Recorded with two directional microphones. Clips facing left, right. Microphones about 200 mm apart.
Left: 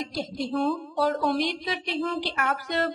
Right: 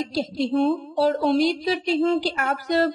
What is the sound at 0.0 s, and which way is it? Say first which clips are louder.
Speech: right 6 dB; 30° right (ahead or behind).